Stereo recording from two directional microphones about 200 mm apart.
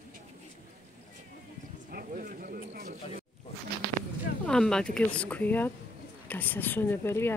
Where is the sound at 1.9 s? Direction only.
45° right (ahead or behind).